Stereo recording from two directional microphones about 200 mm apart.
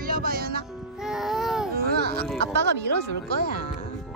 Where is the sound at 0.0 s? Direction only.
45° right (ahead or behind).